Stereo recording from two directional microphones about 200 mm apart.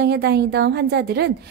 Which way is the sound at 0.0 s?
55° right (ahead or behind).